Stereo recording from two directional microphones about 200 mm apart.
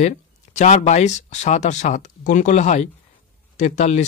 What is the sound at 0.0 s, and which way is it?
Speech, 35° left (ahead or behind).